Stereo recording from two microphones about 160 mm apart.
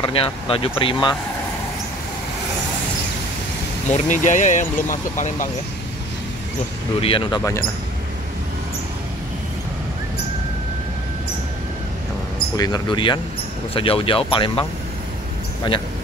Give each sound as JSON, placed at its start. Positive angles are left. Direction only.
{"t": 0.0, "sound": "speech", "side_deg": 35}
{"t": 3.9, "sound": "speech", "side_deg": 50}
{"t": 7.0, "sound": "speech", "side_deg": 35}
{"t": 12.5, "sound": "speech", "side_deg": 25}